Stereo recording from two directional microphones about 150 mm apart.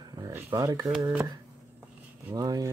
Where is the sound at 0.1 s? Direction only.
20° right (ahead or behind).